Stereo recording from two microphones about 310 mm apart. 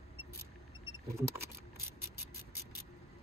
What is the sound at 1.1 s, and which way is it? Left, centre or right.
Mechanisms, centre.